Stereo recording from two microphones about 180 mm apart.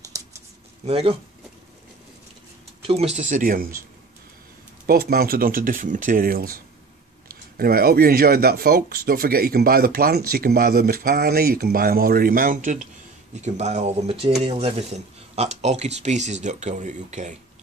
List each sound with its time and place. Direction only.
0.8 s speech: 35° right (ahead or behind)
2.9 s speech: 35° right (ahead or behind)
4.8 s speech: 55° right (ahead or behind)
13.4 s speech: 40° right (ahead or behind)